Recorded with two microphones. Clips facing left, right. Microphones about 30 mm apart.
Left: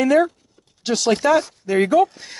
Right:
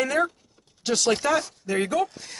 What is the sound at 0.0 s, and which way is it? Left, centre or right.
Speech, centre.